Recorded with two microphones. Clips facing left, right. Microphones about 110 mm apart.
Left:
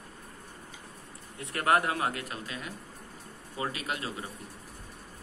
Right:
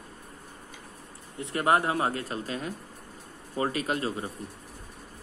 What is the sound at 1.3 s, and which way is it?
Speech, 25° right (ahead or behind).